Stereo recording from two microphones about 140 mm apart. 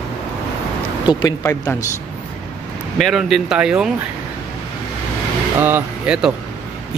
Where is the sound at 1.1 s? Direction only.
30° left (ahead or behind).